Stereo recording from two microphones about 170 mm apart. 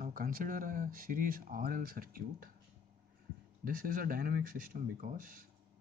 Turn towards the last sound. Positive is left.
turn(degrees=-55)  # may be behind; listen again after turning